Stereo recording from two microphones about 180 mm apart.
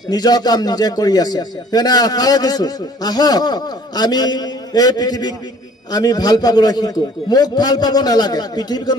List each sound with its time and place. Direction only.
0.1 s a man's voice: 20° left (ahead or behind)